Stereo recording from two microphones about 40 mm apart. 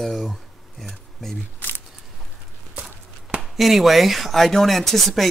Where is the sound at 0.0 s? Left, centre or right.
Centre.